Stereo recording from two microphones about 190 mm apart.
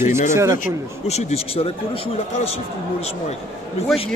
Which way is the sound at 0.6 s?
35° left (ahead or behind).